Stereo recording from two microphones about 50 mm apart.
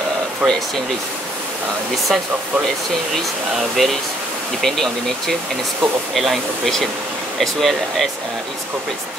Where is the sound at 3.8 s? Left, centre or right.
Centre.